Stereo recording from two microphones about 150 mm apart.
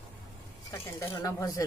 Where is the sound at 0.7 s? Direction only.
20° left (ahead or behind).